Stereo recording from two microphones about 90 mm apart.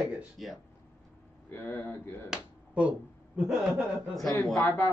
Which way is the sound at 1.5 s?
25° left (ahead or behind).